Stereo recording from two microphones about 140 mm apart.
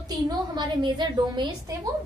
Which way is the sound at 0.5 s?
35° right (ahead or behind).